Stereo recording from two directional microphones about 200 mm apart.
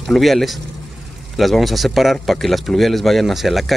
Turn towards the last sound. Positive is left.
turn(degrees=0)  # may be behind; listen again after turning